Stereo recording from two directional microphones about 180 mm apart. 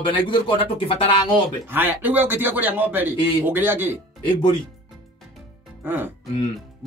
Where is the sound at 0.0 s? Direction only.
30° left (ahead or behind).